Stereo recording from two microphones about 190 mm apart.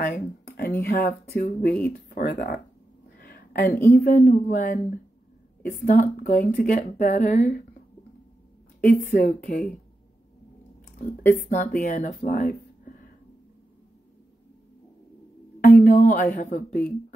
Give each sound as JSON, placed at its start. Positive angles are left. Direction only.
{"t": 0.0, "sound": "a sound", "side_deg": 50}
{"t": 0.8, "sound": "speech", "side_deg": 50}
{"t": 3.2, "sound": "a sound", "side_deg": 50}
{"t": 3.9, "sound": "speech", "side_deg": 50}
{"t": 8.8, "sound": "speech", "side_deg": 45}
{"t": 11.0, "sound": "speech", "side_deg": 45}
{"t": 15.6, "sound": "speech", "side_deg": 45}